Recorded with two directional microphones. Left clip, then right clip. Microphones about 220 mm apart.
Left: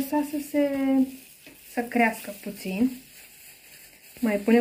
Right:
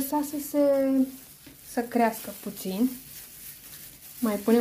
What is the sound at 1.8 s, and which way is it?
Speech, 35° right (ahead or behind).